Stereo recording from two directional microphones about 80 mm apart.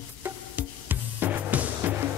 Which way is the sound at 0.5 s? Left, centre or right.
Right.